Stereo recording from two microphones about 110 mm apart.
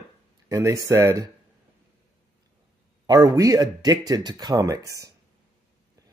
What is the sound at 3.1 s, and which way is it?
Speech, 30° right (ahead or behind).